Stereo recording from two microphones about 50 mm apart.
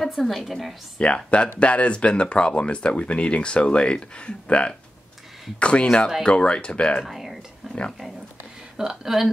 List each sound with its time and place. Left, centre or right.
0.0 s a woman's voice: centre
0.9 s speech: left
7.1 s a woman's voice: centre